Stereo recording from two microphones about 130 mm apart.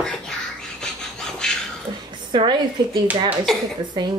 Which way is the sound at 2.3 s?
35° right (ahead or behind).